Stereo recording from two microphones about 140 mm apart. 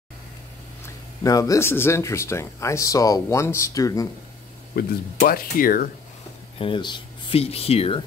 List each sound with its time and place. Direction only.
0.8 s speech: 25° left (ahead or behind)
4.7 s speech: 90° left
6.6 s speech: 35° left (ahead or behind)